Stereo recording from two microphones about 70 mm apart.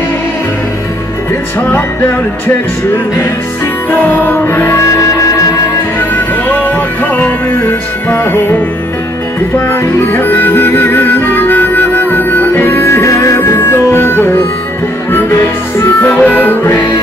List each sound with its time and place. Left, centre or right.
3.9 s music: left
5.9 s music: left
8.1 s music: left
9.7 s music: left
13.4 s music: left
16.0 s music: left